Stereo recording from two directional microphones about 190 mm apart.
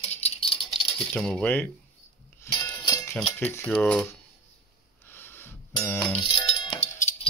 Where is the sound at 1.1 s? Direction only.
5° left (ahead or behind).